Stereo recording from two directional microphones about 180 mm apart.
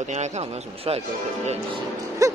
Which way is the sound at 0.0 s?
40° right (ahead or behind).